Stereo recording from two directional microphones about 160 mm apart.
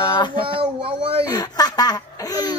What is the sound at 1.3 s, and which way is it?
Speech, 25° left (ahead or behind).